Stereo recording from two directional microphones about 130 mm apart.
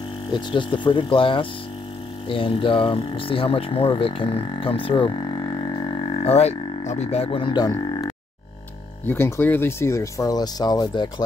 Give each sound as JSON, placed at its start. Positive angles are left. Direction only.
{"t": 0.3, "sound": "speech", "side_deg": 35}
{"t": 5.4, "sound": "a sound", "side_deg": 35}
{"t": 9.0, "sound": "speech", "side_deg": 15}